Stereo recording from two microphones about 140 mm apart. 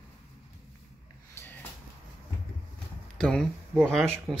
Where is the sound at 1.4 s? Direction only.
20° left (ahead or behind).